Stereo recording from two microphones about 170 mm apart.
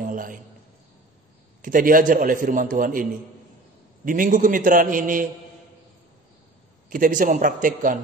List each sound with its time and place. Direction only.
0.0 s a sound: 50° right (ahead or behind)
1.6 s a man's voice: 55° right (ahead or behind)
6.9 s a man's voice: 50° right (ahead or behind)